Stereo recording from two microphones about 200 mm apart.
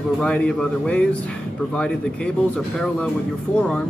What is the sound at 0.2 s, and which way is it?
Speech, 5° left (ahead or behind).